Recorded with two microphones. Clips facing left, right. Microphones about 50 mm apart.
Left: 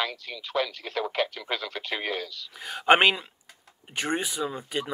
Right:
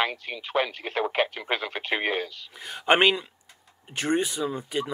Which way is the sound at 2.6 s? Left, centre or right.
Centre.